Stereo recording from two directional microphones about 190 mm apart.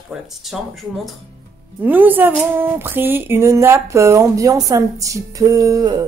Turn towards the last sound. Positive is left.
turn(degrees=-20)  # may be behind; listen again after turning